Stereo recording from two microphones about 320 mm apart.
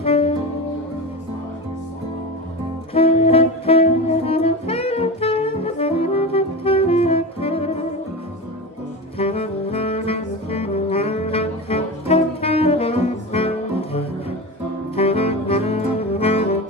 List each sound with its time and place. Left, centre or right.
0.0 s music: centre
2.9 s saxophone: centre
9.2 s saxophone: centre